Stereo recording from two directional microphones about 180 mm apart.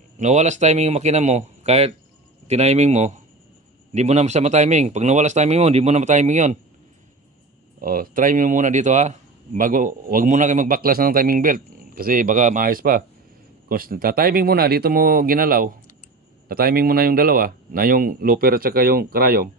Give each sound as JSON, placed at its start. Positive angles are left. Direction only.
{"t": 0.2, "sound": "speech", "side_deg": -40}
{"t": 7.8, "sound": "speech", "side_deg": -50}